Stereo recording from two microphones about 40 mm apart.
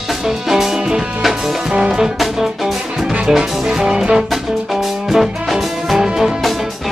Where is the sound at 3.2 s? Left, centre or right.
Centre.